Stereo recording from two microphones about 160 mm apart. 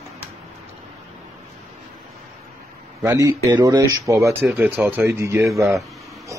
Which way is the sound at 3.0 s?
20° right (ahead or behind).